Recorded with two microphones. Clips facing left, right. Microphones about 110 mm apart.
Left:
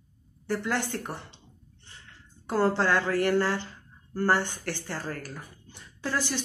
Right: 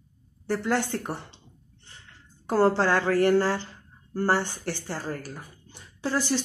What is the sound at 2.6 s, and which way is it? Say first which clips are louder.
Speech: right 3 dB; 30° right (ahead or behind).